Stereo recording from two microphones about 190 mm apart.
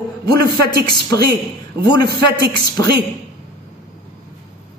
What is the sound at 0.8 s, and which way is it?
Speech, 20° left (ahead or behind).